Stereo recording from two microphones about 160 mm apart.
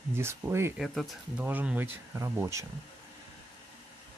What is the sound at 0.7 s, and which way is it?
Speech, centre (ahead or behind).